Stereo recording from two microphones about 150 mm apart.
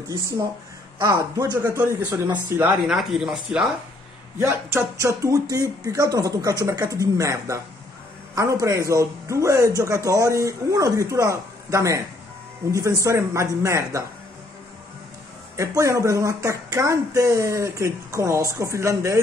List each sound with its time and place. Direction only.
1.0 s speech: 20° right (ahead or behind)
2.9 s speech: centre (ahead or behind)
4.4 s speech: 15° right (ahead or behind)
15.5 s speech: 20° right (ahead or behind)